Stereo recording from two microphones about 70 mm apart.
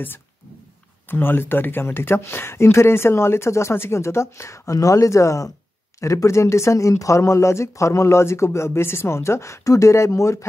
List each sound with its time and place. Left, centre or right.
1.0 s speech: left